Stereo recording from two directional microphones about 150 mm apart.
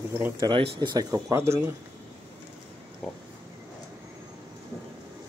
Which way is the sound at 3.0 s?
Centre (ahead or behind).